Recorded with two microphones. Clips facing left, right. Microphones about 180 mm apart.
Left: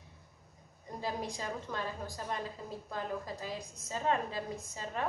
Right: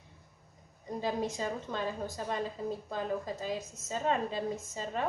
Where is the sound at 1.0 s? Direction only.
20° right (ahead or behind).